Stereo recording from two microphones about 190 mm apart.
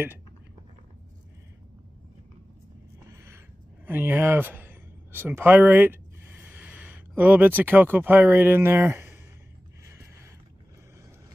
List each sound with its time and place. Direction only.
3.8 s speech: 10° right (ahead or behind)